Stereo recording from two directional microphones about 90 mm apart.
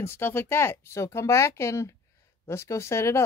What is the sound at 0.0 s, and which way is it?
Speech, 25° left (ahead or behind).